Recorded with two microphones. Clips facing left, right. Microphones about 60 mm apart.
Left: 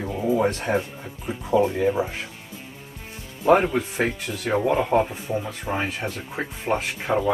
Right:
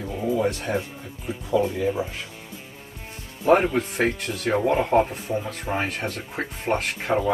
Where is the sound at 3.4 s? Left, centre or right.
Centre.